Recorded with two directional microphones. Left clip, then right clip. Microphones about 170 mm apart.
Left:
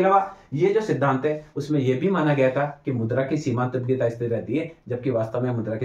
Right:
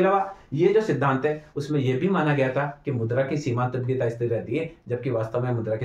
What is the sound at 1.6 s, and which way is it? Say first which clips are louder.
Speech: left 2 dB; 15° right (ahead or behind).